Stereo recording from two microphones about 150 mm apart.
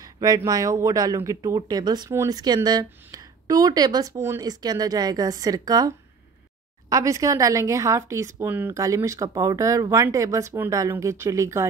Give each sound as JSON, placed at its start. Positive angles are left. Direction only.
{"t": 0.0, "sound": "speech", "side_deg": -25}